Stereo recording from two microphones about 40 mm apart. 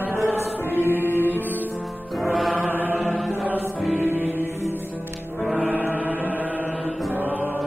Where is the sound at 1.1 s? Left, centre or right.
Left.